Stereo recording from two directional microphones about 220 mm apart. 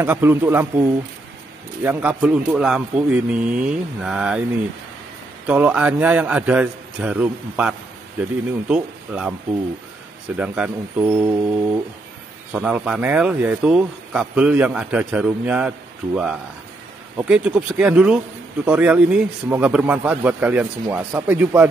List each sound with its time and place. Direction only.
0.0 s a man's voice: 10° right (ahead or behind)
5.5 s a man's voice: 5° right (ahead or behind)
10.3 s a man's voice: 5° right (ahead or behind)
17.2 s a man's voice: 5° right (ahead or behind)